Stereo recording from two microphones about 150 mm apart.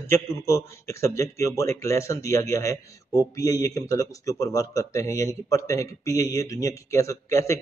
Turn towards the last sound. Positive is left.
turn(degrees=20)  # may be behind; listen again after turning